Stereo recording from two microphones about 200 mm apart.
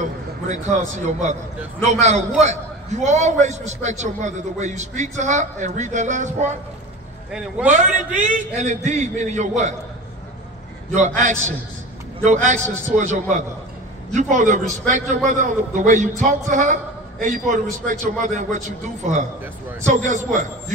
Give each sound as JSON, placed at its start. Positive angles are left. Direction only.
{"t": 0.0, "sound": "a man's voice", "side_deg": -35}
{"t": 7.2, "sound": "a man's voice", "side_deg": -5}
{"t": 7.7, "sound": "a man's voice", "side_deg": -40}
{"t": 10.9, "sound": "a man's voice", "side_deg": -35}